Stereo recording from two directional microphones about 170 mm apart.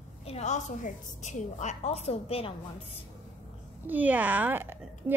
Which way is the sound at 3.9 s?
10° right (ahead or behind).